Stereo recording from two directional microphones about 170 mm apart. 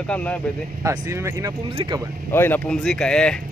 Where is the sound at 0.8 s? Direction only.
15° right (ahead or behind).